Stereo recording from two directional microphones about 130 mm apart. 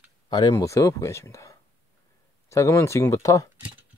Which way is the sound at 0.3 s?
35° left (ahead or behind).